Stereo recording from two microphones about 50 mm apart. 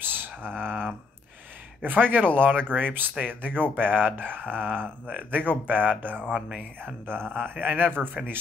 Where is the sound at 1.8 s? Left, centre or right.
Right.